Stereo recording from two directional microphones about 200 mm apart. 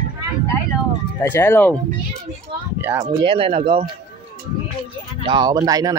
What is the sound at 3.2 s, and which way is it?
Speech, 25° right (ahead or behind).